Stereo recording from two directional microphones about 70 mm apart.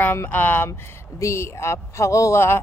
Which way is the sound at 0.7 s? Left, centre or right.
Left.